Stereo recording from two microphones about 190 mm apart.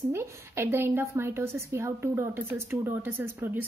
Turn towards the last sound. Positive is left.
turn(degrees=-10)  # may be behind; listen again after turning